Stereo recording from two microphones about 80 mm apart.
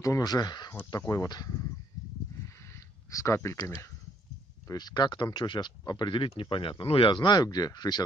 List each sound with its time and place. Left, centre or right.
0.2 s speech: left
2.5 s a sound: left
4.6 s speech: left